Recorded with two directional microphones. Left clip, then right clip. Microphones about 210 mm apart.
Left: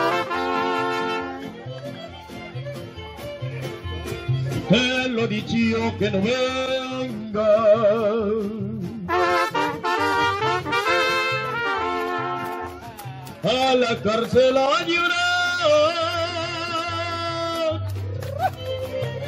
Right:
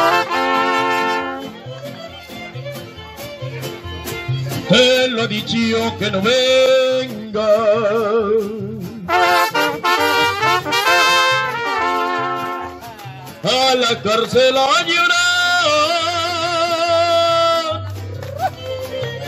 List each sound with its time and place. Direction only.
0.0 s music: 50° right (ahead or behind)
4.6 s music: 35° right (ahead or behind)
13.4 s a sound: 35° right (ahead or behind)